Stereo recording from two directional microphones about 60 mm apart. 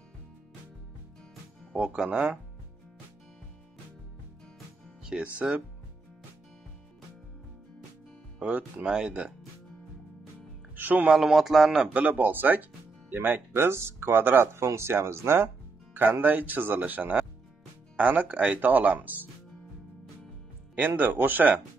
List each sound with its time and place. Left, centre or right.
2.0 s speech: centre
5.0 s music: centre
8.4 s speech: right
8.8 s speech: centre
10.8 s speech: right
11.1 s speech: centre
11.9 s speech: right
14.6 s speech: right
15.9 s speech: right
20.7 s speech: right